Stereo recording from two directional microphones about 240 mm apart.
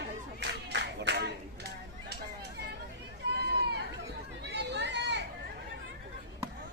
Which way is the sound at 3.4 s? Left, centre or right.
Right.